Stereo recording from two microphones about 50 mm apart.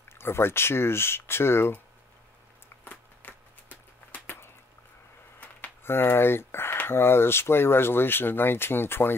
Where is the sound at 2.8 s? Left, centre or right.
Left.